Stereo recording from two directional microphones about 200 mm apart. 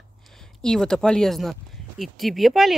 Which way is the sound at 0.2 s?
Centre (ahead or behind).